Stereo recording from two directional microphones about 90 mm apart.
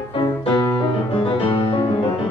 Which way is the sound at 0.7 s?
90° left.